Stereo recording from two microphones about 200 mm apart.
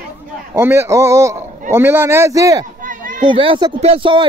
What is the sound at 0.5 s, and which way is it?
A man's voice, 10° right (ahead or behind).